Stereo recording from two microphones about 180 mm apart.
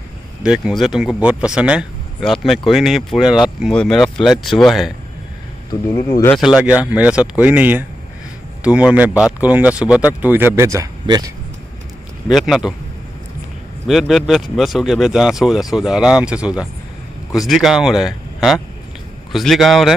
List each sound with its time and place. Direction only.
0.4 s speech: 5° right (ahead or behind)
5.7 s speech: 20° left (ahead or behind)
6.3 s speech: centre (ahead or behind); by 11.3 s 20° right (ahead or behind)
12.3 s speech: centre (ahead or behind)
13.8 s speech: centre (ahead or behind)